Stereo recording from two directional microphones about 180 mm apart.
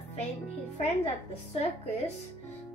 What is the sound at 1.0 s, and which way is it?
Speech, 35° left (ahead or behind).